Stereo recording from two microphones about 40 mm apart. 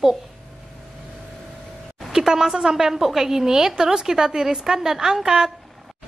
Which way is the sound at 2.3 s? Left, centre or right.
Centre.